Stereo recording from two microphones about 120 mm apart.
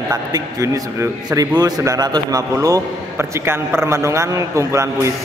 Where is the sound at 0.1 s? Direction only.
30° right (ahead or behind).